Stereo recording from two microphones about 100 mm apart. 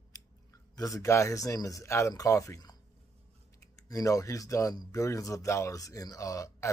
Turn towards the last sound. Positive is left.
turn(degrees=30)  # may be behind; listen again after turning